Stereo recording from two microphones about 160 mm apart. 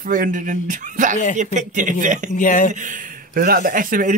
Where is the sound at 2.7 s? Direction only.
55° right (ahead or behind).